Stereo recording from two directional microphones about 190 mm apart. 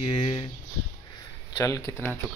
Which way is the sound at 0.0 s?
25° left (ahead or behind).